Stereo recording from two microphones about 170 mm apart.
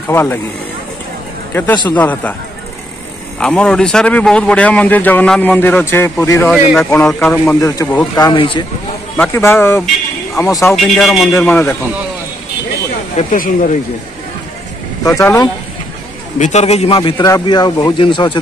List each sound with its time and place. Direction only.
0.1 s speech: 15° left (ahead or behind)
1.9 s speech: 10° left (ahead or behind)
3.3 s speech: 5° left (ahead or behind)
6.5 s speech: centre (ahead or behind)
8.2 s speech: 30° left (ahead or behind)
9.1 s a man's voice: 15° left (ahead or behind)
10.8 s a man's voice: centre (ahead or behind)
11.3 s speech: 10° left (ahead or behind)
13.1 s speech: 50° left (ahead or behind)
15.0 s speech: 20° left (ahead or behind)
16.3 s a man's voice: 45° left (ahead or behind); by 18.4 s 30° left (ahead or behind)